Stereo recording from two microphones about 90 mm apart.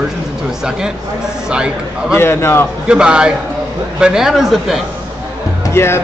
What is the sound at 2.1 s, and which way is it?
Speech, 25° left (ahead or behind).